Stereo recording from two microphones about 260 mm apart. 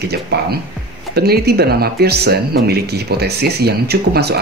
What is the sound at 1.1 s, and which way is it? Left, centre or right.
Speech, right.